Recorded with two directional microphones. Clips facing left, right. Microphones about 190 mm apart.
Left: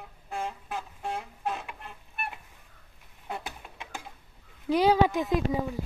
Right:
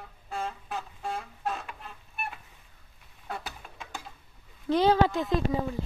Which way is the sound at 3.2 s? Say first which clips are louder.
Left 1 dB; 20° left (ahead or behind).